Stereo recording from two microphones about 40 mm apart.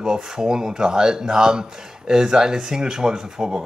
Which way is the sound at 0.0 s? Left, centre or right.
Centre.